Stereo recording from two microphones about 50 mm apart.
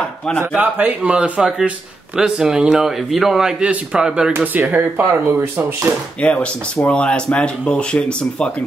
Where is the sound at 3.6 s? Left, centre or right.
Right.